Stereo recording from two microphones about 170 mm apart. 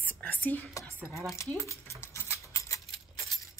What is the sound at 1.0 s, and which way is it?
Speech, centre (ahead or behind).